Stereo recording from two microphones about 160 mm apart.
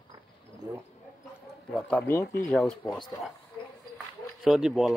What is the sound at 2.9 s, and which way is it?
Speech, 25° left (ahead or behind).